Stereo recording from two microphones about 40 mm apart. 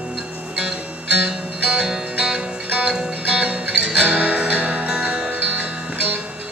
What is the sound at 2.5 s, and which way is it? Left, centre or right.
Music, right.